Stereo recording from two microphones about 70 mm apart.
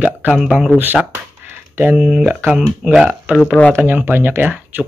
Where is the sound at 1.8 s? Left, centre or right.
Centre.